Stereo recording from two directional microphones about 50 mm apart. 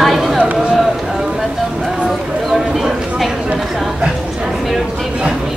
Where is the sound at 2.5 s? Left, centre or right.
Centre.